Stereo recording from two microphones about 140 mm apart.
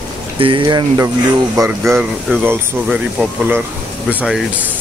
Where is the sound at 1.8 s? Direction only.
5° right (ahead or behind).